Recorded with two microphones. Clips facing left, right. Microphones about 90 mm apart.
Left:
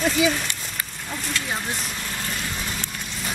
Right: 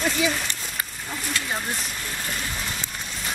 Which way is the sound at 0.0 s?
Centre (ahead or behind).